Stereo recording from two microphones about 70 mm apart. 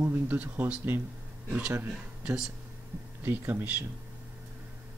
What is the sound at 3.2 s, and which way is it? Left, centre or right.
Speech, right.